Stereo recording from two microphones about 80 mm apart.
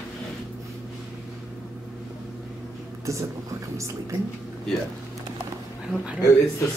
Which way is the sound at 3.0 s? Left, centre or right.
Right.